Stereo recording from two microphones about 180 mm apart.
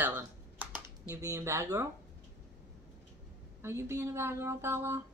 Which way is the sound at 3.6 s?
15° right (ahead or behind).